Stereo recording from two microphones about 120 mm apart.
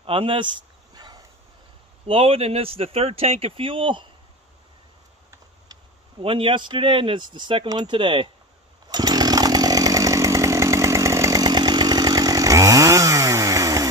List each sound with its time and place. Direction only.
0.0 s speech: 50° right (ahead or behind)
0.9 s dog: 35° right (ahead or behind)
2.0 s speech: 50° right (ahead or behind)
6.2 s speech: 45° right (ahead or behind)
8.8 s chainsaw: 35° right (ahead or behind)